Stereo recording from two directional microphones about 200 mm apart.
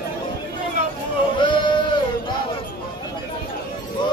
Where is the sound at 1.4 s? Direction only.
25° left (ahead or behind).